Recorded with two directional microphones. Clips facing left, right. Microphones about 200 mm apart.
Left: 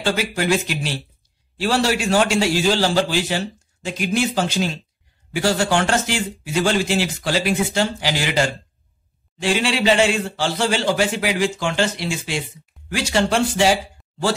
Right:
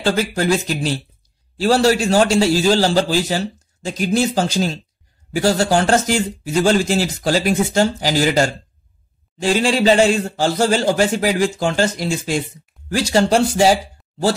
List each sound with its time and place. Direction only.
0.0 s a man's voice: 35° right (ahead or behind)
12.9 s a man's voice: 40° right (ahead or behind)